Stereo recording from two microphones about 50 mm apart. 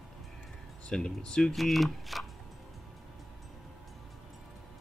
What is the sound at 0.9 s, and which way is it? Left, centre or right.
Speech, centre.